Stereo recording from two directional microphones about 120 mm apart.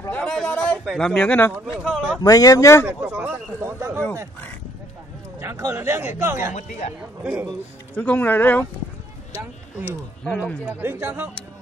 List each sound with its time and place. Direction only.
0.1 s a sound: 10° left (ahead or behind)
0.8 s speech: 5° left (ahead or behind)
1.7 s speech: centre (ahead or behind)
2.2 s speech: 30° left (ahead or behind)
2.8 s speech: 15° right (ahead or behind)
5.4 s speech: 20° right (ahead or behind)
7.9 s speech: 10° left (ahead or behind)
9.8 s speech: 5° left (ahead or behind)
10.6 s speech: 15° right (ahead or behind)